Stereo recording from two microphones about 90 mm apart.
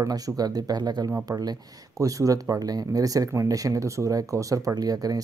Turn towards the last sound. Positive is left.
turn(degrees=-45)  # may be behind; listen again after turning